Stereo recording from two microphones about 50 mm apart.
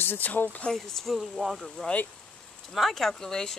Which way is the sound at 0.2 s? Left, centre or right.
Left.